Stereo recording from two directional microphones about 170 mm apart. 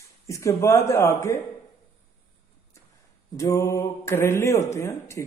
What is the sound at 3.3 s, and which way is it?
Speech, 20° left (ahead or behind).